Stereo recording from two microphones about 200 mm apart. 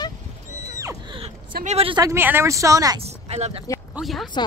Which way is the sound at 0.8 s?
25° right (ahead or behind).